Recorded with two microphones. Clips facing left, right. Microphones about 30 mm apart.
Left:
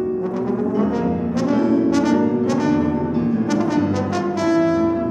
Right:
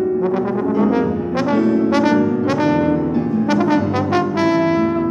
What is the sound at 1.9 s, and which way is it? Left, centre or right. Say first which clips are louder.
Brass instrument: right 2 dB; right.